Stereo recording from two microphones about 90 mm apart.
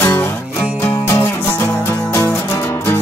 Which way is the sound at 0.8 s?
30° left (ahead or behind).